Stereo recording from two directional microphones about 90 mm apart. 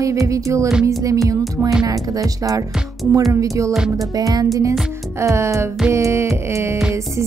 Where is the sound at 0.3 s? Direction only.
35° right (ahead or behind).